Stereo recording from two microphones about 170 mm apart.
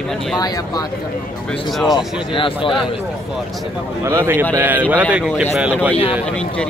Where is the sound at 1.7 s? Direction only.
Centre (ahead or behind).